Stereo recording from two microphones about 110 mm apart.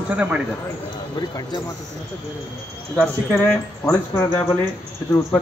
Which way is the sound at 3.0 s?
5° left (ahead or behind).